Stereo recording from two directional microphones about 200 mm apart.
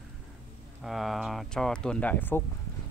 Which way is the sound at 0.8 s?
Centre (ahead or behind).